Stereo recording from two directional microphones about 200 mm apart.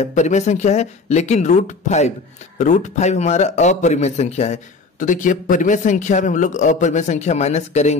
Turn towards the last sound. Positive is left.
turn(degrees=35)  # may be behind; listen again after turning